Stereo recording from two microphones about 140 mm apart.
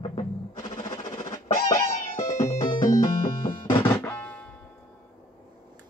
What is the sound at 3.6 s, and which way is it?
Music, 40° left (ahead or behind).